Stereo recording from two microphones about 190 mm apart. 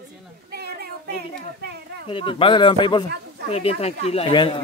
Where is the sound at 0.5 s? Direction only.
55° right (ahead or behind).